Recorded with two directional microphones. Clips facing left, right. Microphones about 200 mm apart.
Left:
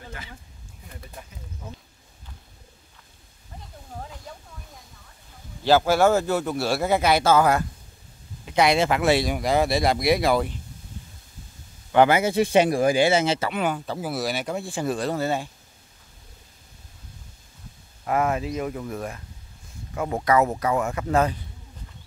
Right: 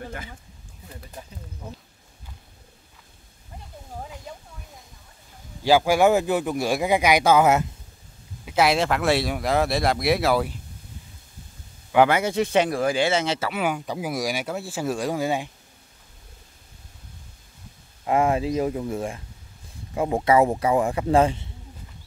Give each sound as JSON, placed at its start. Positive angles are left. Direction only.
{"t": 5.6, "sound": "speech", "side_deg": -10}
{"t": 8.5, "sound": "speech", "side_deg": 0}
{"t": 11.9, "sound": "speech", "side_deg": 0}
{"t": 18.0, "sound": "speech", "side_deg": -25}